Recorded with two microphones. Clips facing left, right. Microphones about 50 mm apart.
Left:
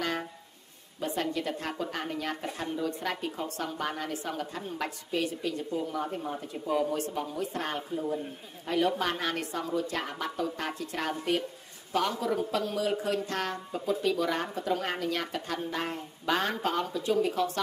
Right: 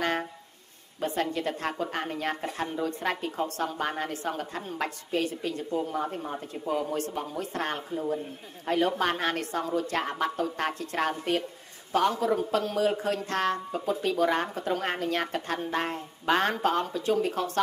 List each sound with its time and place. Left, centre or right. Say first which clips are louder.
1.0 s a woman's voice: right 2 dB; right